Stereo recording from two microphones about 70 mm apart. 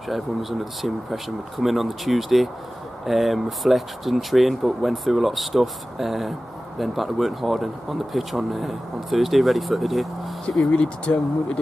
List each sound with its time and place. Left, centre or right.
0.1 s speech: centre
10.7 s speech: centre